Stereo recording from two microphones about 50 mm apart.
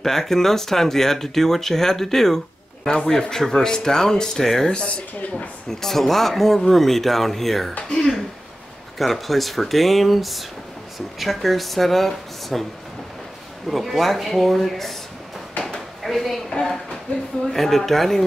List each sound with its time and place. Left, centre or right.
0.0 s speech: centre
4.7 s speech: left
5.7 s speech: centre
13.7 s speech: centre
16.0 s a sound: centre
17.5 s speech: centre